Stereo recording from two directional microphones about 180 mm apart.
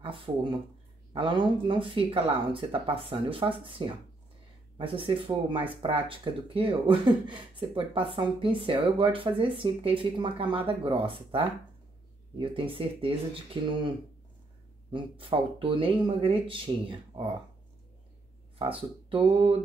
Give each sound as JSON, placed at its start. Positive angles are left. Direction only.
{"t": 0.0, "sound": "speech", "side_deg": -30}
{"t": 18.6, "sound": "speech", "side_deg": -30}